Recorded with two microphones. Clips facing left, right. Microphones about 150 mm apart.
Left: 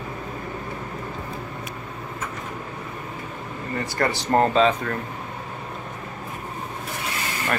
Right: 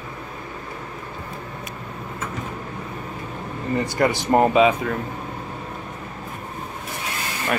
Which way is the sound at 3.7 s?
15° right (ahead or behind).